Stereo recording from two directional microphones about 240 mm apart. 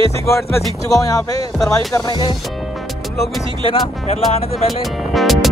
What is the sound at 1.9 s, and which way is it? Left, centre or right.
Speech, centre.